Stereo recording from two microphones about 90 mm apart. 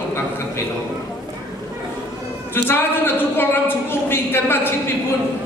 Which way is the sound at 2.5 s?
25° left (ahead or behind).